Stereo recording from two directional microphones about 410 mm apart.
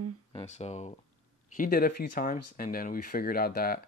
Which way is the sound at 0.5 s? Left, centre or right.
Centre.